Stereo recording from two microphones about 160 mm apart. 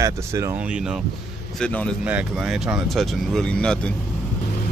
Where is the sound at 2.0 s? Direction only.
10° right (ahead or behind).